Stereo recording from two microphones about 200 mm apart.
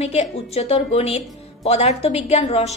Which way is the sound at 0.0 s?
30° left (ahead or behind).